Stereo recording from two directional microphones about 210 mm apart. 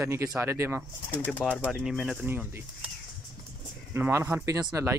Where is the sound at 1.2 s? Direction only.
5° left (ahead or behind); by 2.9 s 10° right (ahead or behind).